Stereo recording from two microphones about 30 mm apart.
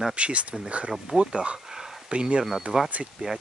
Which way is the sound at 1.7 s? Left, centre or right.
Centre.